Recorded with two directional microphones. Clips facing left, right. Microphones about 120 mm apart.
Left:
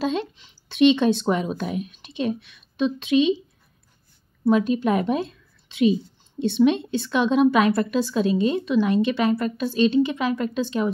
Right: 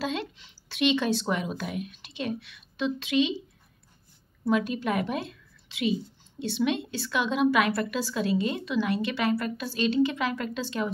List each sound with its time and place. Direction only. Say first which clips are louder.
0.0 s speech: left 6 dB; 20° left (ahead or behind)
4.5 s a woman's voice: left 7 dB; 20° left (ahead or behind)